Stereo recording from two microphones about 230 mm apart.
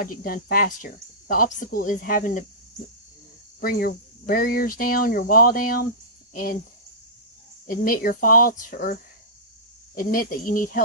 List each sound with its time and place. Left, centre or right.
0.0 s speech: left
3.6 s speech: left
7.6 s speech: left